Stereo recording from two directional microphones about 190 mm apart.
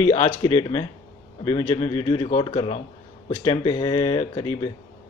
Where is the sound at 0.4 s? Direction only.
25° left (ahead or behind).